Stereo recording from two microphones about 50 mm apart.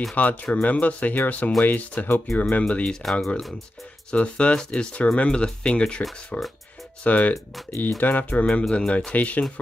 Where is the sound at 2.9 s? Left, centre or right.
Centre.